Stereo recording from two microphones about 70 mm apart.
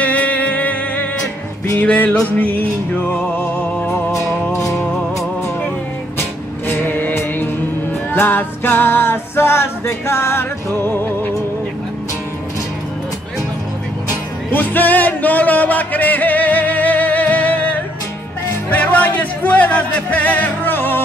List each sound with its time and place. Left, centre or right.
0.0 s music: left
4.1 s music: left
6.7 s music: left
14.5 s music: left